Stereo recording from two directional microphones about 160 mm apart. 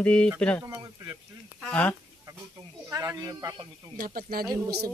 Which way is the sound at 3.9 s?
65° right (ahead or behind).